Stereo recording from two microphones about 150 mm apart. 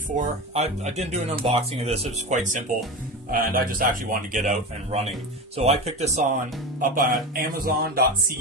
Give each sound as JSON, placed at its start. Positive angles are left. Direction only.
{"t": 0.1, "sound": "speech", "side_deg": -50}
{"t": 3.3, "sound": "a man's voice", "side_deg": -75}
{"t": 6.8, "sound": "a man's voice", "side_deg": -70}